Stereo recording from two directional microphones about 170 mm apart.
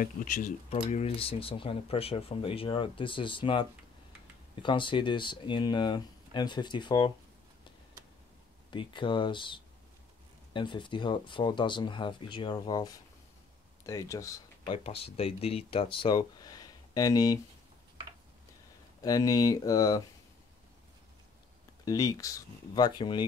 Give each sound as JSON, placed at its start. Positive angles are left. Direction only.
{"t": 0.0, "sound": "speech", "side_deg": 55}
{"t": 0.7, "sound": "speech", "side_deg": 35}
{"t": 8.6, "sound": "speech", "side_deg": 30}
{"t": 19.0, "sound": "speech", "side_deg": 20}
{"t": 21.8, "sound": "speech", "side_deg": 20}